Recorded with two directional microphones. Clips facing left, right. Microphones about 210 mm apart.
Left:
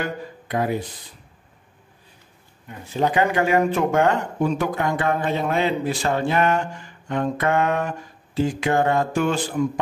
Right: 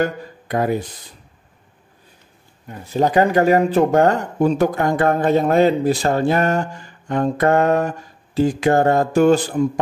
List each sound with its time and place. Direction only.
0.0 s speech: 45° right (ahead or behind)
2.9 s speech: 40° right (ahead or behind)